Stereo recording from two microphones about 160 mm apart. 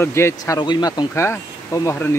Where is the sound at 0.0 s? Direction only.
15° left (ahead or behind).